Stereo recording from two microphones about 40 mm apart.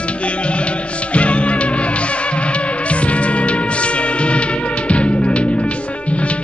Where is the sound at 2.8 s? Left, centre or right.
Left.